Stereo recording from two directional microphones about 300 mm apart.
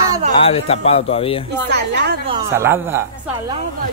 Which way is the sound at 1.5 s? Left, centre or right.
Right.